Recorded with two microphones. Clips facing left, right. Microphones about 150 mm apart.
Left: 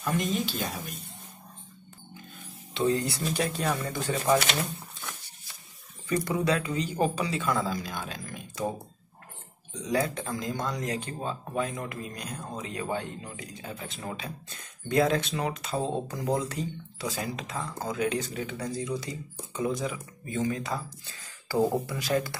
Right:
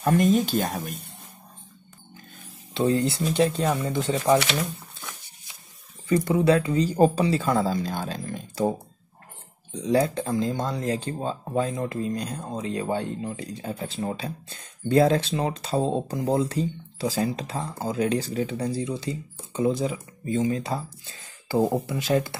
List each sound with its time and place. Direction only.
0.0 s speech: 50° right (ahead or behind)
2.7 s speech: 35° right (ahead or behind)
6.0 s speech: 25° right (ahead or behind)
9.8 s speech: 30° right (ahead or behind)